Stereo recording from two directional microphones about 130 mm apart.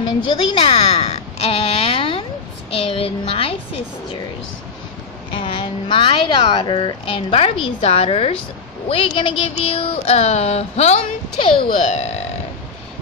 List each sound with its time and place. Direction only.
0.6 s a sound: 50° left (ahead or behind)
2.7 s speech: 45° left (ahead or behind)
5.3 s speech: 40° left (ahead or behind); by 12.2 s 60° left (ahead or behind)